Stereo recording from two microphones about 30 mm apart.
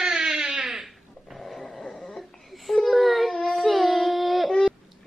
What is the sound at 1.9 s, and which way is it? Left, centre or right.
Wheeze, centre.